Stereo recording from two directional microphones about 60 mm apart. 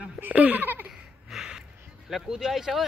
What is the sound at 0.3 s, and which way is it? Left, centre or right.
Speech, right.